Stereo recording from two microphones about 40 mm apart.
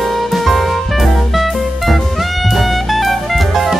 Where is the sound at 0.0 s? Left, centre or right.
Centre.